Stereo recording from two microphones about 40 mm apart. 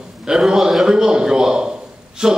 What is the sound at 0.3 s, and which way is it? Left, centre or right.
A man's voice, centre.